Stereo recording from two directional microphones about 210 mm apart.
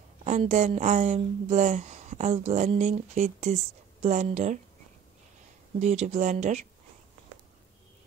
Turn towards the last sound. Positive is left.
turn(degrees=-35)  # may be behind; listen again after turning